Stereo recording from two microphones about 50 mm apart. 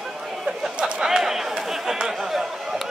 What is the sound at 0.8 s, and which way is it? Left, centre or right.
Chatter, centre.